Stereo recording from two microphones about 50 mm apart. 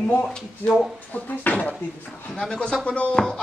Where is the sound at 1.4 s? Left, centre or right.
Left.